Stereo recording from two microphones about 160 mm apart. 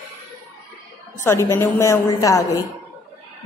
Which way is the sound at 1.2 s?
15° left (ahead or behind).